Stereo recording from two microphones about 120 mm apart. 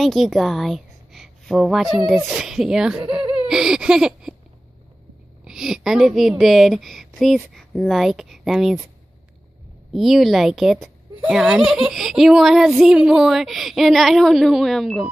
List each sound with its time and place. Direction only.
0.0 s a woman's voice: centre (ahead or behind)
3.1 s laughter: 45° right (ahead or behind)
3.4 s a sound: 5° right (ahead or behind)
5.4 s a woman's voice: 5° right (ahead or behind)
9.9 s a woman's voice: centre (ahead or behind)